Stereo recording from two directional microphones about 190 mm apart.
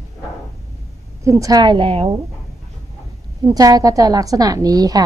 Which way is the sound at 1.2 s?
15° right (ahead or behind).